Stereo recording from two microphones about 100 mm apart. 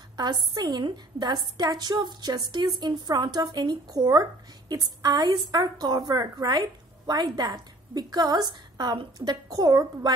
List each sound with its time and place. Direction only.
0.2 s a woman's voice: 45° right (ahead or behind)